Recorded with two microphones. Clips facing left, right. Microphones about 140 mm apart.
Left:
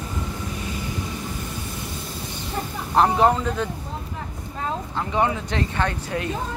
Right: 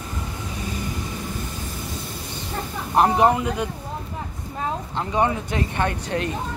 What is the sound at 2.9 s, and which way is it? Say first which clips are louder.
Speech: right 1 dB; 15° right (ahead or behind).